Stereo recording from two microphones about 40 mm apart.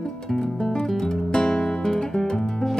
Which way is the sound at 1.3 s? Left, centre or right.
Centre.